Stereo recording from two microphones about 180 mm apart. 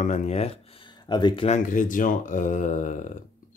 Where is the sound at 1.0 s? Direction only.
25° left (ahead or behind).